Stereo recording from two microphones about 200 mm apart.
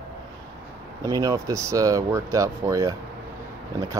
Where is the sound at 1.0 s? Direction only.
15° right (ahead or behind).